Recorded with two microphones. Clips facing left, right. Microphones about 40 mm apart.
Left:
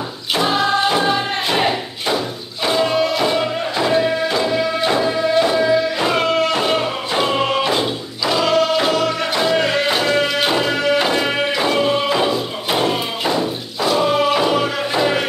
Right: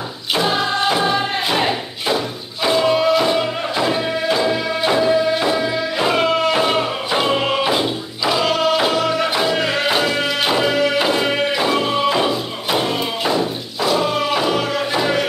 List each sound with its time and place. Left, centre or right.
0.3 s music: centre